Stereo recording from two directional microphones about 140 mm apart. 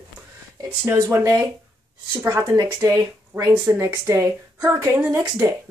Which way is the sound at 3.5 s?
15° right (ahead or behind).